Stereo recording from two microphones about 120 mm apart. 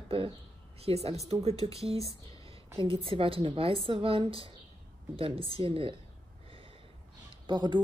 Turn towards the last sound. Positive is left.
turn(degrees=-40)  # may be behind; listen again after turning